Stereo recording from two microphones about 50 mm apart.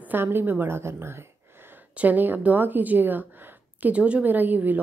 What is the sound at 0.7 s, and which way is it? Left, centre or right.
Speech, right.